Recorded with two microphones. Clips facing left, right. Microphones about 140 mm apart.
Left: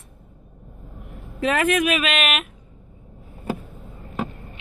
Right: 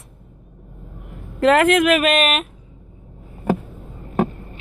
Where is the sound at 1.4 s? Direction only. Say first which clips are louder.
Right 6 dB; 80° right.